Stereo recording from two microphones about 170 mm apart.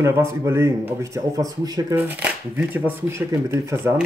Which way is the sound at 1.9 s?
10° right (ahead or behind).